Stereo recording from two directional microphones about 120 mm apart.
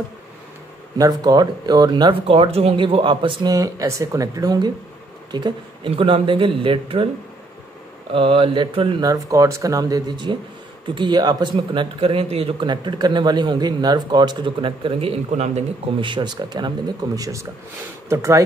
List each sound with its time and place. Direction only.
0.9 s speech: 30° right (ahead or behind)
2.2 s speech: 50° right (ahead or behind)
3.4 s speech: 30° right (ahead or behind)
5.3 s speech: 45° right (ahead or behind)
8.1 s speech: 50° right (ahead or behind)
9.1 s speech: 25° right (ahead or behind); by 15.6 s 65° right (ahead or behind)
16.0 s speech: 40° right (ahead or behind); by 18.4 s 25° right (ahead or behind)